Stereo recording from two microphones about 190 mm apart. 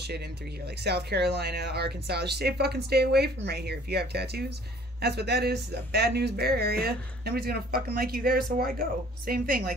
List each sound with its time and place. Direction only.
0.8 s speech: 60° right (ahead or behind)